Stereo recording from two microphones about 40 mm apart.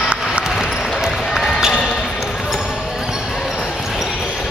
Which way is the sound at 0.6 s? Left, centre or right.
Centre.